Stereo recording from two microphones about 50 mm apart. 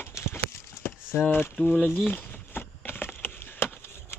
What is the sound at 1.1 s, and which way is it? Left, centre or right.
Speech, left.